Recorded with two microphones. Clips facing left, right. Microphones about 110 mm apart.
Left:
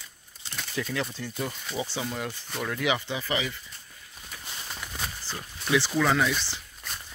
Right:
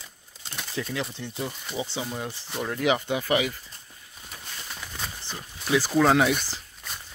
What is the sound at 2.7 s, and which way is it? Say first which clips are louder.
Speech: right 5 dB; 40° right (ahead or behind).